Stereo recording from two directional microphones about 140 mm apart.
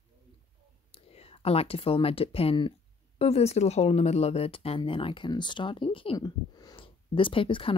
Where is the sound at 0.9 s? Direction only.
45° left (ahead or behind).